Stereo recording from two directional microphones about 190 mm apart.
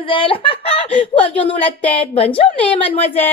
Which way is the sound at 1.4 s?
10° left (ahead or behind).